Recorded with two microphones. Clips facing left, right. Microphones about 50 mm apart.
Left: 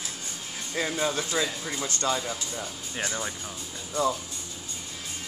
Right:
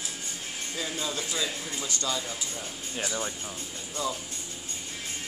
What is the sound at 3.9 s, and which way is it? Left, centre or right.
Speech, left.